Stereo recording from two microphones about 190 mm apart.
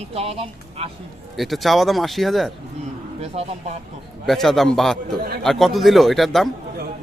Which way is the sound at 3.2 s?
35° right (ahead or behind).